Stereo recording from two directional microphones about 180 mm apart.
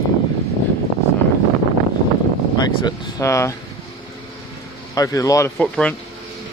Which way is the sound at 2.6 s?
25° left (ahead or behind).